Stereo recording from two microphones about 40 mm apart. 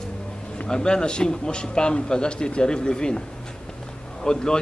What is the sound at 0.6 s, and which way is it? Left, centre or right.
A man's voice, centre.